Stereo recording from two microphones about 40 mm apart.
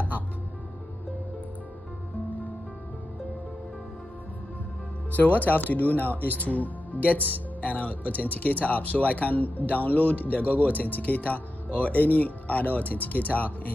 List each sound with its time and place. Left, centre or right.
5.1 s speech: left